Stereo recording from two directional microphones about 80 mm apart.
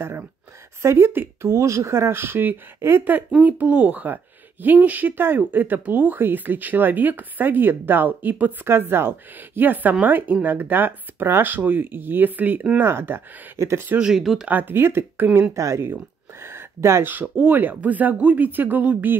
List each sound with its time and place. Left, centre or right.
0.8 s speech: right
13.9 s speech: centre
14.5 s speech: right
16.4 s a sound: right
17.1 s speech: right